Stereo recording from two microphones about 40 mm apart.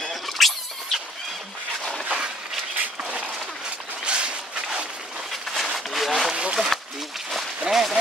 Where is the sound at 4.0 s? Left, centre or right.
Right.